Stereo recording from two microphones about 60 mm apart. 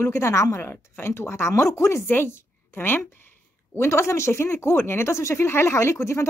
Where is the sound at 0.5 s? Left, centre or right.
Left.